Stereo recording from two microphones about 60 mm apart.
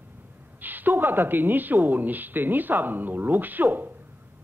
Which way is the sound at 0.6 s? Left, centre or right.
Right.